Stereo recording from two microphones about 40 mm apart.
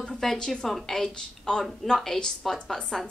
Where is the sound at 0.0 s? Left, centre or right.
Centre.